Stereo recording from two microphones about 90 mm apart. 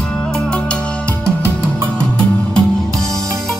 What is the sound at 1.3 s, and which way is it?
Music, 25° right (ahead or behind).